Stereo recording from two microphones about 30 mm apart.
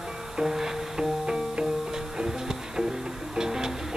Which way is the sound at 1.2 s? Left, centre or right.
Right.